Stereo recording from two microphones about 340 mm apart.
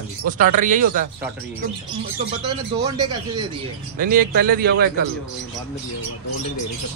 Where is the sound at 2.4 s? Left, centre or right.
Centre.